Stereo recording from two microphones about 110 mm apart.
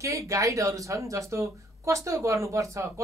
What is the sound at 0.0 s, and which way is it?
Speech, 30° right (ahead or behind).